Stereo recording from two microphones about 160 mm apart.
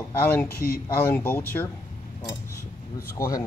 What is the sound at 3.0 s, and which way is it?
Speech, 20° left (ahead or behind).